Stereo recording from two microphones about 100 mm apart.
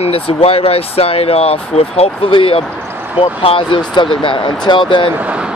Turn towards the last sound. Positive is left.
turn(degrees=-15)  # may be behind; listen again after turning